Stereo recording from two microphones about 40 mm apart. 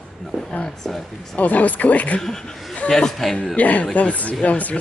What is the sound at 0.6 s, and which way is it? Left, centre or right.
Speech, centre.